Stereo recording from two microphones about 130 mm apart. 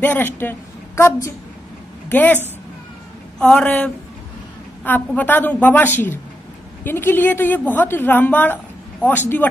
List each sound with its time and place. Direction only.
0.0 s a woman's voice: 15° left (ahead or behind)